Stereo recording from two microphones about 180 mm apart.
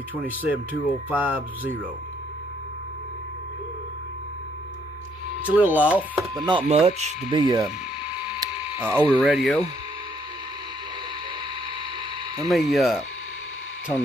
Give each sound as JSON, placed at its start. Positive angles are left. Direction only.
{"t": 0.1, "sound": "speech", "side_deg": -10}
{"t": 5.4, "sound": "speech", "side_deg": -10}
{"t": 6.3, "sound": "speech", "side_deg": -25}
{"t": 7.3, "sound": "speech", "side_deg": -25}
{"t": 8.4, "sound": "a sound", "side_deg": -15}
{"t": 9.2, "sound": "speech", "side_deg": 0}
{"t": 12.4, "sound": "speech", "side_deg": 0}